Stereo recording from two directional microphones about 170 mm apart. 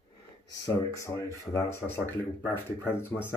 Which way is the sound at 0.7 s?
20° left (ahead or behind).